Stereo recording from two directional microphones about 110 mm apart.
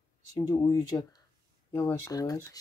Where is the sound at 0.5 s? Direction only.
30° left (ahead or behind).